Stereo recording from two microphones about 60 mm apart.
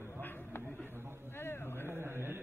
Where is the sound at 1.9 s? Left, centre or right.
Right.